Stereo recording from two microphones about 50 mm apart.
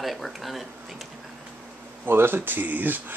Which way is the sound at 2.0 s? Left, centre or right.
Right.